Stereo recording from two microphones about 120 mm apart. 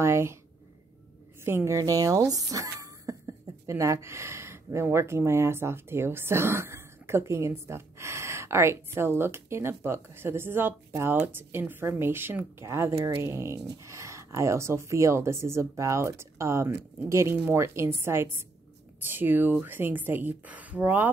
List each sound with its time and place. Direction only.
0.0 s speech: 20° right (ahead or behind)
1.4 s speech: 20° right (ahead or behind)